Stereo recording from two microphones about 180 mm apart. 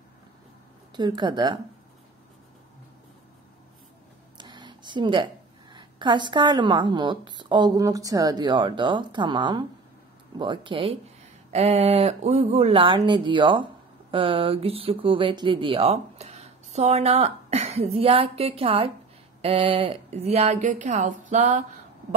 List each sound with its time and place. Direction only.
0.9 s speech: 25° right (ahead or behind)
4.4 s a woman's voice: 25° right (ahead or behind); by 21.6 s 45° right (ahead or behind)